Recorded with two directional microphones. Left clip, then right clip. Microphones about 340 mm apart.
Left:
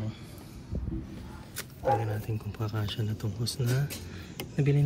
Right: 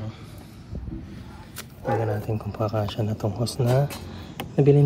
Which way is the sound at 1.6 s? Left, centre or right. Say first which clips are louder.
Right 2 dB; centre.